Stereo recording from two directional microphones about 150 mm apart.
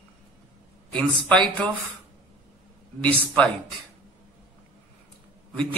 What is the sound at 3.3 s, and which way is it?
Speech, 5° left (ahead or behind).